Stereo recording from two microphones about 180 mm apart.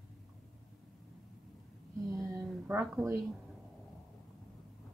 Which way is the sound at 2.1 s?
15° right (ahead or behind).